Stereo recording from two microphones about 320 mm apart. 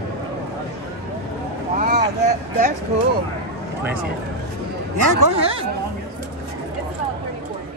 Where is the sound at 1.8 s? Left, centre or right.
Right.